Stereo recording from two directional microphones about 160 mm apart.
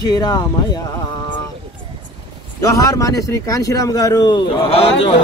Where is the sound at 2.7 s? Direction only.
20° left (ahead or behind).